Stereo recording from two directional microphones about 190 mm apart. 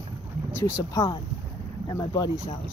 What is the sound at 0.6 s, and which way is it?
Speech, 15° left (ahead or behind).